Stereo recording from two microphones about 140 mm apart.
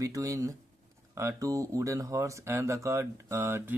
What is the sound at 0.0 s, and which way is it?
Speech, 25° right (ahead or behind).